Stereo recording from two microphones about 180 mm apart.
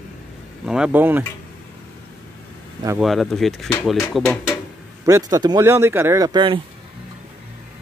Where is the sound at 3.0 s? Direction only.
Centre (ahead or behind).